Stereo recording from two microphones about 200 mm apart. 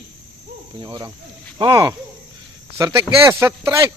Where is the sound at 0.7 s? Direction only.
20° right (ahead or behind).